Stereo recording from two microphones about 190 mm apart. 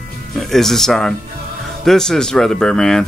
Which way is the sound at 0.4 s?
Centre (ahead or behind).